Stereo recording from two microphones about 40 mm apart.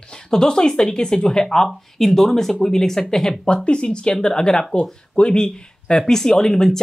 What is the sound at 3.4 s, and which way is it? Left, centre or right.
Speech, left.